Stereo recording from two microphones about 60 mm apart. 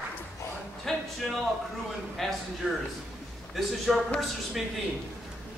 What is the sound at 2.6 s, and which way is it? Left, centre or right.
Speech, centre.